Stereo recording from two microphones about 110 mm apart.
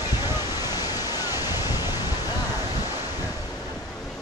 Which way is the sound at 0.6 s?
35° left (ahead or behind).